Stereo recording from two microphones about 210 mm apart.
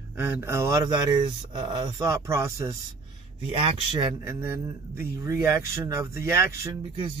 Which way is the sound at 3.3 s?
25° right (ahead or behind).